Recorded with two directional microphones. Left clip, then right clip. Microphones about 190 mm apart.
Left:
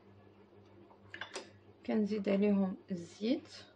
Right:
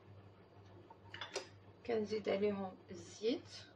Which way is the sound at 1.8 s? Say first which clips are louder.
Left 2 dB; 50° left (ahead or behind).